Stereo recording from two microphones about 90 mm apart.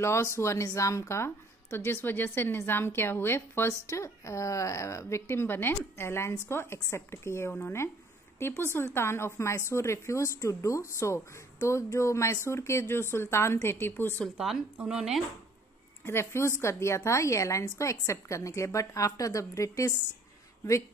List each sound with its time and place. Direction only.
0.0 s a woman's voice: 30° left (ahead or behind)
14.8 s speech: 10° right (ahead or behind)
16.1 s a woman's voice: 30° left (ahead or behind)